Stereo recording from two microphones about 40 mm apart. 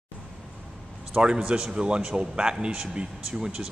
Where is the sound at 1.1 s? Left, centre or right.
Centre.